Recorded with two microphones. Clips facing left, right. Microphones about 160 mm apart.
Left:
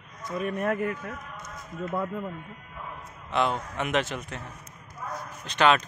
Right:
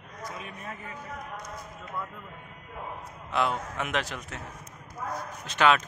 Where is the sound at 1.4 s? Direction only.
55° left (ahead or behind).